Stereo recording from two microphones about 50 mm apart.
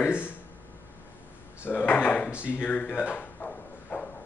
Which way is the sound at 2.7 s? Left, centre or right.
Left.